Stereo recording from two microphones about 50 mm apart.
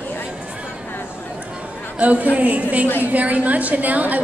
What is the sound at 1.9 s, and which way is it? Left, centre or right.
A woman's voice, right.